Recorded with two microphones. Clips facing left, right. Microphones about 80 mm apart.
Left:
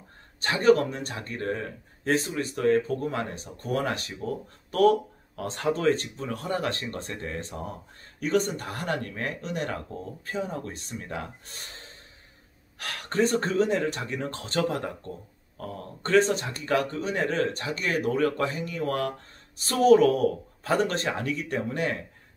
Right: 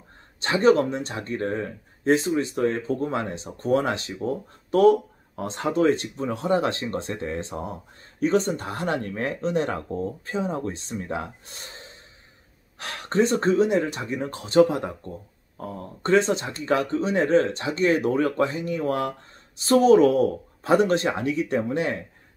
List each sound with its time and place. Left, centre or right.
0.4 s speech: right